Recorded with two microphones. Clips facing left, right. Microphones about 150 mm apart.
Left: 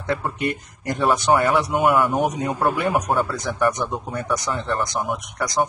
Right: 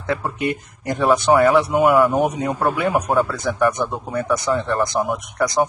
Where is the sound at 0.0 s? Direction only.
Centre (ahead or behind).